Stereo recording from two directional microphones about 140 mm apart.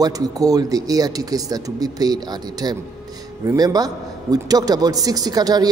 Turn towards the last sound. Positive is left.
turn(degrees=-30)  # may be behind; listen again after turning